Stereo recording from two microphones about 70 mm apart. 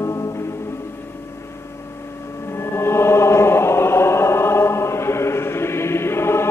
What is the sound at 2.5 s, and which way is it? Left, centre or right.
Chant, left.